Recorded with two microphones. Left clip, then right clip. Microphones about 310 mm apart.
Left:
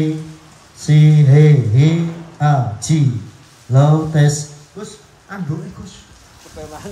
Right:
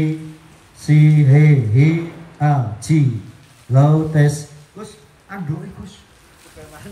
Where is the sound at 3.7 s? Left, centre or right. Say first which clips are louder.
Left 1 dB; left.